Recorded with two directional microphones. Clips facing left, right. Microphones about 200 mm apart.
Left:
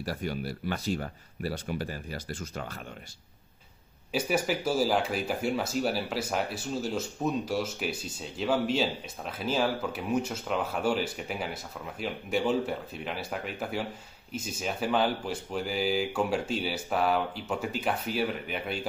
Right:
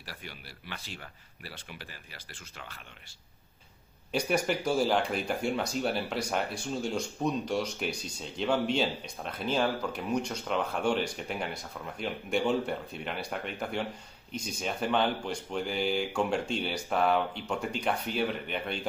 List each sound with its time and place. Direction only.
0.0 s speech: 45° left (ahead or behind)
4.1 s speech: 5° left (ahead or behind)